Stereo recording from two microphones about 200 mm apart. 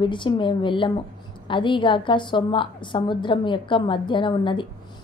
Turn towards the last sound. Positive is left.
turn(degrees=25)  # may be behind; listen again after turning